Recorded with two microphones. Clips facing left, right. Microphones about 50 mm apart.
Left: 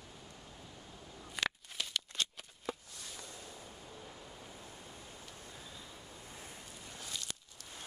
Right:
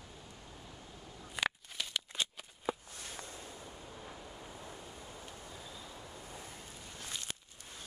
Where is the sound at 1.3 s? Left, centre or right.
Centre.